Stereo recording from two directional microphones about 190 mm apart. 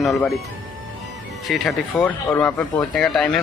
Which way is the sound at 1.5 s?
5° left (ahead or behind).